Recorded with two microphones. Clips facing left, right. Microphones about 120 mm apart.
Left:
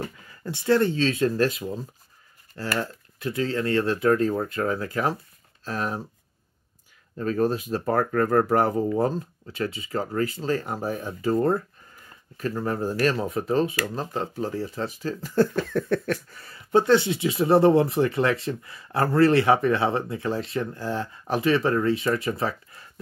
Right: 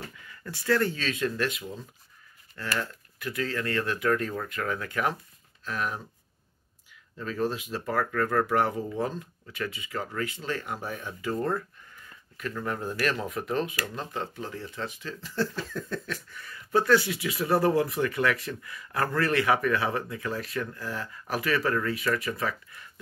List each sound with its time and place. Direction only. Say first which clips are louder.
0.0 s speech: left 7 dB; 30° left (ahead or behind)
7.2 s speech: left 6 dB; 45° left (ahead or behind); by 16.2 s 65° left (ahead or behind)
16.3 s speech: left 5 dB; 35° left (ahead or behind)